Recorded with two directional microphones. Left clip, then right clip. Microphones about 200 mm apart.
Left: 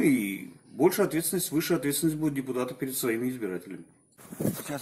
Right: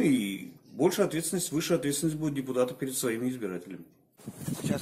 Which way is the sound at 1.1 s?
10° right (ahead or behind).